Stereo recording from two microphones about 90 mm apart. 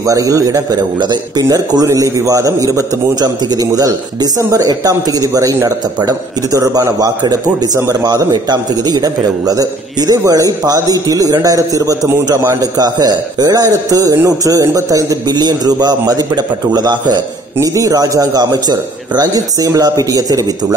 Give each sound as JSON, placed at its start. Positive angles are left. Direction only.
{"t": 0.0, "sound": "a man's voice", "side_deg": -40}
{"t": 17.6, "sound": "a man's voice", "side_deg": -40}